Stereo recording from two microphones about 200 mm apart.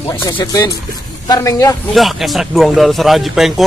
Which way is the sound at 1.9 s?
Centre (ahead or behind).